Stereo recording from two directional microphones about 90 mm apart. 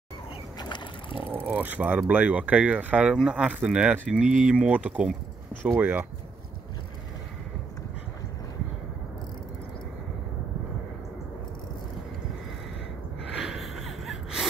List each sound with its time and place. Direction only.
0.6 s boat: 60° left (ahead or behind)
1.2 s speech: 20° right (ahead or behind)
13.4 s gasp: centre (ahead or behind)